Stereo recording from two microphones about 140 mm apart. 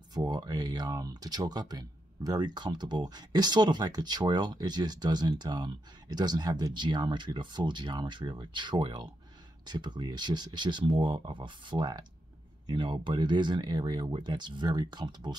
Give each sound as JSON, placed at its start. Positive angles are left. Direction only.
{"t": 0.1, "sound": "speech", "side_deg": -30}